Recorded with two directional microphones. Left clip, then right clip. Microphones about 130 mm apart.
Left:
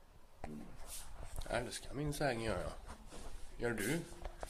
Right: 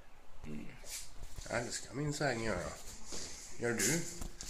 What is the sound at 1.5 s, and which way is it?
Speech, 35° left (ahead or behind).